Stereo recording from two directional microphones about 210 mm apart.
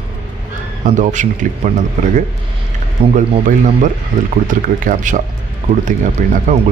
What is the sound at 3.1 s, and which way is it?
Speech, 40° right (ahead or behind).